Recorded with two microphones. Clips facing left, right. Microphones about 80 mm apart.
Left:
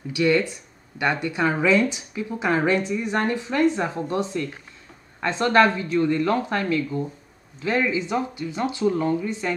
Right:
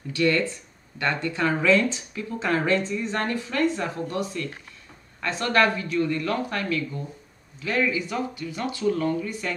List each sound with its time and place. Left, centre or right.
0.1 s speech: centre